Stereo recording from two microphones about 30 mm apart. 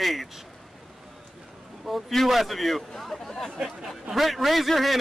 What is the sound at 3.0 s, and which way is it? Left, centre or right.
Chatter, centre.